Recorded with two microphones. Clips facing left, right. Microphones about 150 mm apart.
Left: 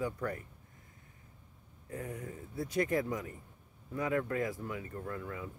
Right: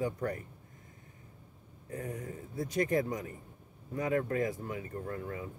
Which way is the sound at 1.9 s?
40° right (ahead or behind).